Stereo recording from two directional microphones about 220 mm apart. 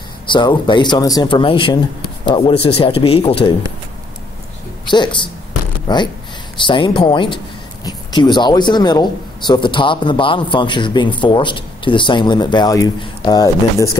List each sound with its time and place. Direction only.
0.3 s a man's voice: 20° left (ahead or behind)
4.8 s a man's voice: 20° left (ahead or behind)